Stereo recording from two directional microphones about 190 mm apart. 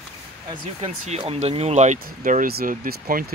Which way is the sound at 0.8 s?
35° right (ahead or behind).